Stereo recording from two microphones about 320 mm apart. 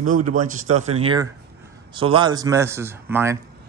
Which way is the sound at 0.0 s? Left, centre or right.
Right.